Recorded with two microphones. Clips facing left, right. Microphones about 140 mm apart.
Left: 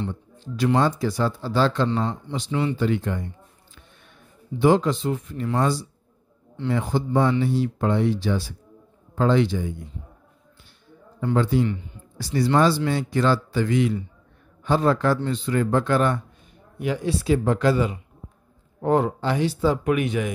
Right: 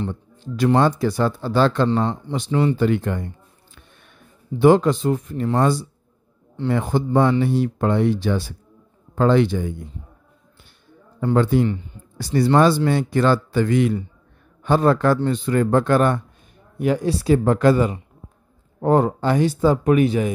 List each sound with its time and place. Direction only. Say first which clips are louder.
0.1 s speech: right 3 dB; 55° right (ahead or behind)
1.9 s speech: right 4 dB; 35° right (ahead or behind)
2.3 s speech: right 5 dB; 50° right (ahead or behind)
4.6 s a man's voice: right 4 dB; 55° right (ahead or behind)
11.1 s a man's voice: right 4 dB; 50° right (ahead or behind); by 20.3 s 35° right (ahead or behind)